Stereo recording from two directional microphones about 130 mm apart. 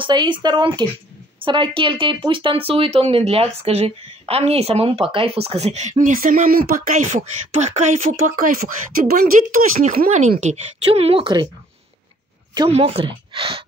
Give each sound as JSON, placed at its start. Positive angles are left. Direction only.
{"t": 0.0, "sound": "speech", "side_deg": -35}
{"t": 7.0, "sound": "speech", "side_deg": -70}
{"t": 10.9, "sound": "speech", "side_deg": -45}
{"t": 12.6, "sound": "speech", "side_deg": -50}